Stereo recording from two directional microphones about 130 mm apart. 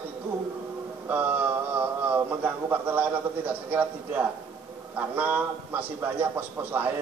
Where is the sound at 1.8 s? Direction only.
15° right (ahead or behind).